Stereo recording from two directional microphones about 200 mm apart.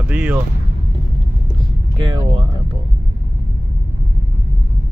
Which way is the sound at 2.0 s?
20° right (ahead or behind).